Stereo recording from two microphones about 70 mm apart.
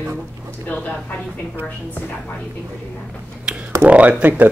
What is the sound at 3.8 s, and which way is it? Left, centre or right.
Speech, right.